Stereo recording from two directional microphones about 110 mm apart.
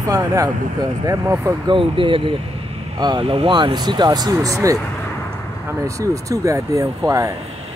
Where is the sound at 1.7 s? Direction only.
50° right (ahead or behind); by 4.8 s 30° right (ahead or behind).